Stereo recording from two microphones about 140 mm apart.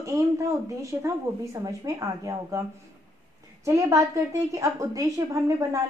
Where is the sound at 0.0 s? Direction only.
20° right (ahead or behind).